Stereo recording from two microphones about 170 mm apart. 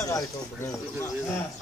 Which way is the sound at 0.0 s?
20° left (ahead or behind).